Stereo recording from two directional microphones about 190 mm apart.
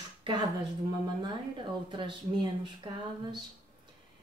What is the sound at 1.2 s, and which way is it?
A woman's voice, 25° right (ahead or behind).